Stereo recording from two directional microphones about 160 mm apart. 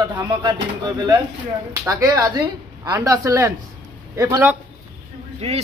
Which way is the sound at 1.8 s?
20° right (ahead or behind).